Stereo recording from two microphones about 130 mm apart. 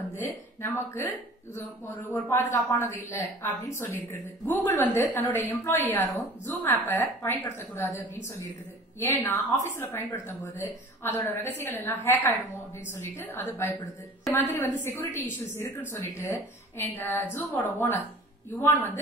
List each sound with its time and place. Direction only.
0.6 s a woman's voice: 20° left (ahead or behind)
9.0 s a woman's voice: 15° left (ahead or behind)
16.7 s a woman's voice: 15° left (ahead or behind)